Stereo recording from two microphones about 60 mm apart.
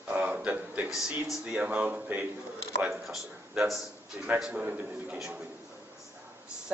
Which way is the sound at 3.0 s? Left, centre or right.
Centre.